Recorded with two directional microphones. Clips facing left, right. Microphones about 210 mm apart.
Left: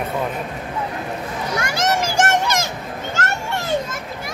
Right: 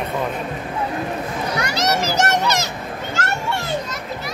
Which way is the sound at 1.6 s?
50° left (ahead or behind).